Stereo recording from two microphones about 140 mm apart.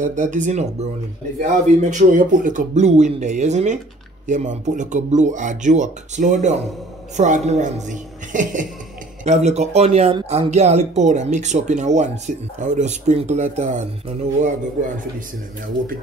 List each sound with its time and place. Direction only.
0.0 s speech: 65° right (ahead or behind)
9.2 s speech: 55° right (ahead or behind)